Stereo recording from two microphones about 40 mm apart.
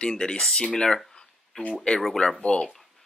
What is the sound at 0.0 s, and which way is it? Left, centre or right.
Speech, centre.